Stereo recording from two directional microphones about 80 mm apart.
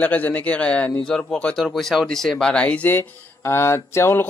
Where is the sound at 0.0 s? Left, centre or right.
Centre.